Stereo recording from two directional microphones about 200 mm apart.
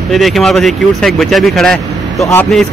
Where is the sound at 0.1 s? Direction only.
Centre (ahead or behind).